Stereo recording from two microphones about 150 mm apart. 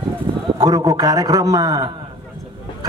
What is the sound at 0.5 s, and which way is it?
A man's voice, 25° right (ahead or behind).